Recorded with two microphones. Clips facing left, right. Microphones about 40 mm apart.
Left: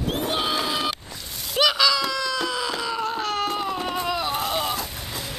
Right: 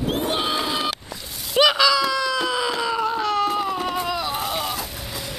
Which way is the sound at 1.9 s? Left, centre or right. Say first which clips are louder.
Right 4 dB; centre.